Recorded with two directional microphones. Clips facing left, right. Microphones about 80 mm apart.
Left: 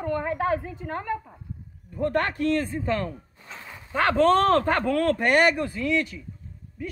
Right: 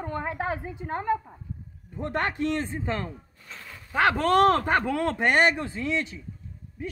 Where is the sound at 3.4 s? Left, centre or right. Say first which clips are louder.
Left 2 dB; left.